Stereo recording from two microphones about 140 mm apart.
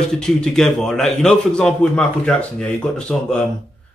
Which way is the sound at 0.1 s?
5° left (ahead or behind).